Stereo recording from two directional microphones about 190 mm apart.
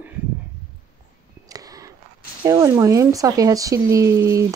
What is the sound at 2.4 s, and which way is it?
Speech, 20° right (ahead or behind).